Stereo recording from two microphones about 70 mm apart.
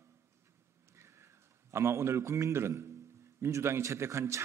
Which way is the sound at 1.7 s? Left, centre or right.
Right.